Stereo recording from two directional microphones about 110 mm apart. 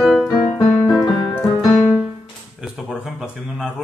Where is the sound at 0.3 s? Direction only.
40° left (ahead or behind).